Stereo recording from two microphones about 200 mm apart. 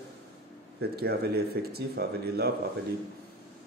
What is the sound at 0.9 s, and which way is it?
Speech, 55° right (ahead or behind).